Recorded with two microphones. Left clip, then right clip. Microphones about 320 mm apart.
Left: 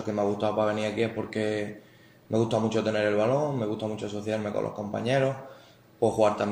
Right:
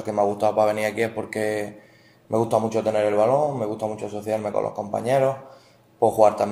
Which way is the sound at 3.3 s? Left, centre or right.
Right.